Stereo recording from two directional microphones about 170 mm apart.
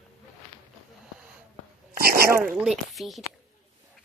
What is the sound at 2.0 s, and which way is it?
Dog, 65° right (ahead or behind).